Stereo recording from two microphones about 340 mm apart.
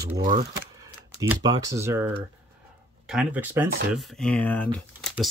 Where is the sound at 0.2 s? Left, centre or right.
Right.